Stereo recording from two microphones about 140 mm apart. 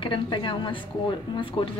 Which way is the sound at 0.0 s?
35° left (ahead or behind).